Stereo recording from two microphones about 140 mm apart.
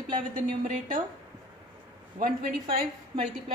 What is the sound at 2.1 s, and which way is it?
Speech, 90° right.